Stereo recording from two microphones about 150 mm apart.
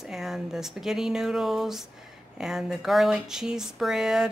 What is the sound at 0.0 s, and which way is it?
Speech, centre (ahead or behind).